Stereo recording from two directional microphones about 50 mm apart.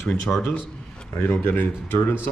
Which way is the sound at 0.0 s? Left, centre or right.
Centre.